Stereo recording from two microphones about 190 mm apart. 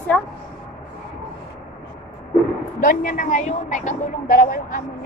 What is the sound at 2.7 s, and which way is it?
A woman's voice, 45° left (ahead or behind).